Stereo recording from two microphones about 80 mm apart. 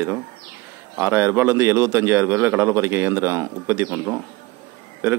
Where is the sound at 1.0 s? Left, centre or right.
Right.